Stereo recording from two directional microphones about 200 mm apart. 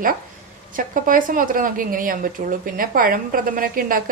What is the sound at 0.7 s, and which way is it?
A woman's voice, 45° right (ahead or behind).